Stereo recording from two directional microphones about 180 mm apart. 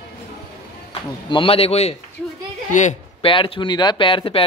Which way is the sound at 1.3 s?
30° left (ahead or behind).